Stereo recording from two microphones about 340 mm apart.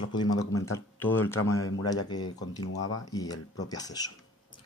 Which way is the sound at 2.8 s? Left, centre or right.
Left.